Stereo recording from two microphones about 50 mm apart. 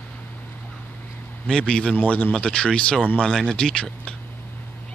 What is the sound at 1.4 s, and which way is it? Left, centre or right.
A man's voice, centre.